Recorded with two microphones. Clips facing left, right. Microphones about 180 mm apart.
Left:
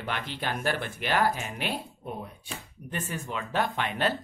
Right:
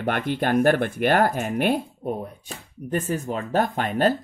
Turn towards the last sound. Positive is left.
turn(degrees=-45)  # may be behind; listen again after turning